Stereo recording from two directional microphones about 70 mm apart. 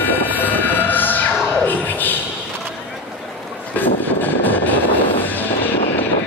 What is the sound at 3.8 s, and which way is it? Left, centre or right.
Train, left.